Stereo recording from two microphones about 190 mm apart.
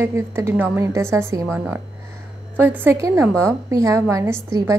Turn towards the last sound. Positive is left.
turn(degrees=-15)  # may be behind; listen again after turning